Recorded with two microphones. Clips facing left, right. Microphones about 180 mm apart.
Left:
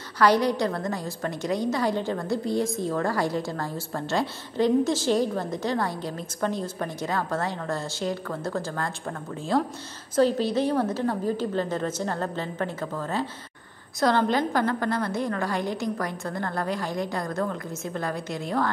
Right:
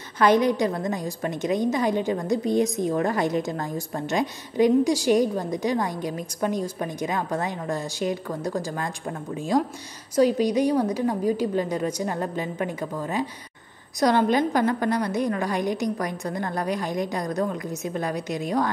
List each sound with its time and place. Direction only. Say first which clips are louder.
0.2 s a woman's voice: right 2 dB; 20° right (ahead or behind)